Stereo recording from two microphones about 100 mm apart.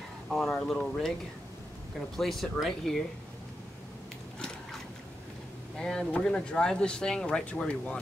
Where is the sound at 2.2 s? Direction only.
Centre (ahead or behind).